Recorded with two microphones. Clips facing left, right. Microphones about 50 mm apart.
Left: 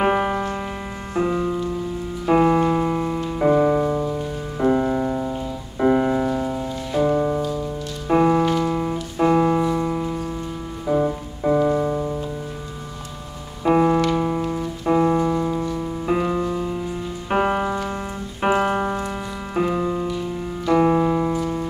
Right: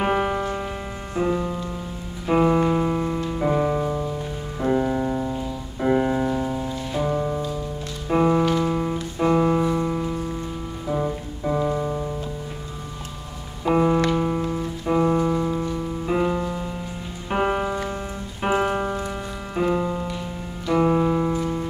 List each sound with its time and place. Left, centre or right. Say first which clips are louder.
0.0 s music: left 2 dB; centre
5.3 s music: left 1 dB; left
5.9 s piano: left 2 dB; centre
8.1 s music: left 2 dB; centre
10.9 s piano: left 5 dB; centre
13.7 s music: left 2 dB; centre
14.9 s piano: left 2 dB; centre
15.8 s music: even; centre
19.5 s music: left 1 dB; centre